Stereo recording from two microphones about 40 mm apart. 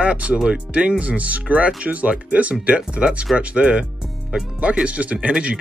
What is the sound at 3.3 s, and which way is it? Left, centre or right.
Speech, right.